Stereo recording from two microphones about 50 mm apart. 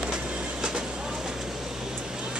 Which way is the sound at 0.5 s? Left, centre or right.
Centre.